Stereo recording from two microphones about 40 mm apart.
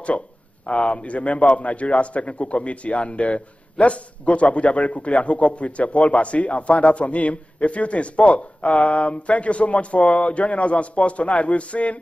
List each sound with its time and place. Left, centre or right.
0.7 s a man's voice: left